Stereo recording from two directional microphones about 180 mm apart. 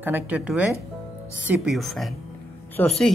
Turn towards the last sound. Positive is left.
turn(degrees=5)  # may be behind; listen again after turning